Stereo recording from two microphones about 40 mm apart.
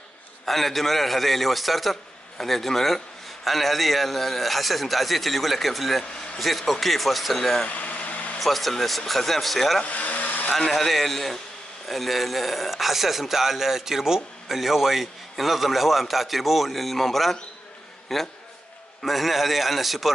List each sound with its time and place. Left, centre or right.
0.5 s a man's voice: centre
7.6 s vehicle: left
8.4 s a man's voice: centre
9.8 s a sound: left
10.7 s a man's voice: centre